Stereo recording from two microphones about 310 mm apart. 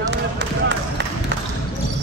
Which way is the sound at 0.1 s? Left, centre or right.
Right.